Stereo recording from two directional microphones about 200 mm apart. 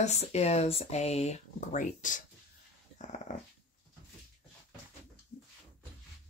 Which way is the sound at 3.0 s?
35° left (ahead or behind).